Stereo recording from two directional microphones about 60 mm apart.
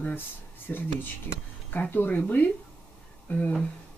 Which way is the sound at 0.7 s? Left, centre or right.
Left.